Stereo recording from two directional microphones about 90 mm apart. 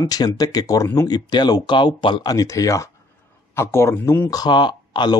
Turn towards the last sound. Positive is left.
turn(degrees=55)  # may be behind; listen again after turning